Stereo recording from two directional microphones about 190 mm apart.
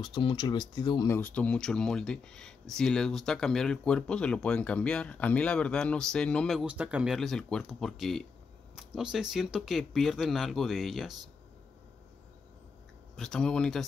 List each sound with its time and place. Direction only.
0.0 s speech: 25° left (ahead or behind); by 11.2 s centre (ahead or behind)
13.1 s speech: centre (ahead or behind)